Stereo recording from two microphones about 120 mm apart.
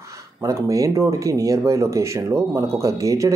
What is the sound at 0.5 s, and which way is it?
Speech, 30° right (ahead or behind).